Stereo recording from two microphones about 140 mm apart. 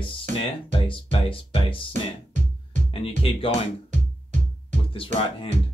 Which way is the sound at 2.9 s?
40° left (ahead or behind).